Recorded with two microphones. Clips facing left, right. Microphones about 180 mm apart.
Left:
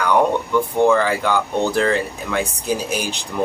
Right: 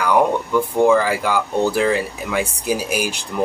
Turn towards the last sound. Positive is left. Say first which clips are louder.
# right 1 dB
turn(degrees=-10)  # may be behind; listen again after turning